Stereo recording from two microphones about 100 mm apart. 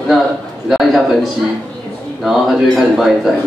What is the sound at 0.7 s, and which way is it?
Speech, centre (ahead or behind).